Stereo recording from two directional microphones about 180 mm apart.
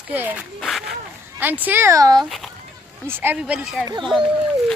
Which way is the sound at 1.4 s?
10° right (ahead or behind).